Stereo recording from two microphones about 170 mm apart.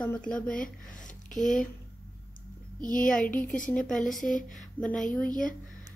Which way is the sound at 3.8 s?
Centre (ahead or behind).